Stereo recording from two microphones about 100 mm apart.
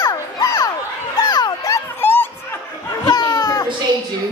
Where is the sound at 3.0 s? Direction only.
45° left (ahead or behind).